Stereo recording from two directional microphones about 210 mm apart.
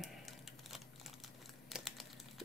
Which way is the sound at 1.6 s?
Centre (ahead or behind).